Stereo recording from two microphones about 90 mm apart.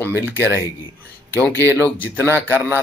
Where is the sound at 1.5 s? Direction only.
20° left (ahead or behind).